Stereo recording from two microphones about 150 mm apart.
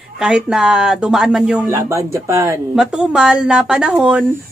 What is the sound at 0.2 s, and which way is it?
Speech, 5° right (ahead or behind).